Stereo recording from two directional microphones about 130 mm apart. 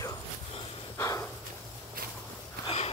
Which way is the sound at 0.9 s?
20° left (ahead or behind).